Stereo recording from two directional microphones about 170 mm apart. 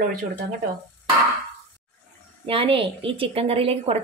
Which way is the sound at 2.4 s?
35° right (ahead or behind).